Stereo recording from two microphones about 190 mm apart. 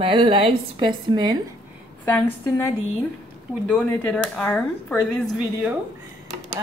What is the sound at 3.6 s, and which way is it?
Speech, 5° left (ahead or behind).